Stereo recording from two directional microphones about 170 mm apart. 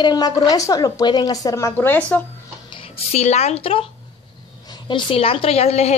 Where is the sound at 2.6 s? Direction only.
30° left (ahead or behind).